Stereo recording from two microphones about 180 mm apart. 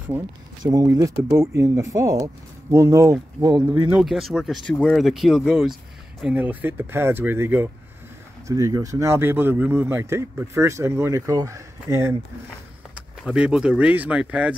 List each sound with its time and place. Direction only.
0.7 s speech: 20° right (ahead or behind)
3.9 s speech: centre (ahead or behind)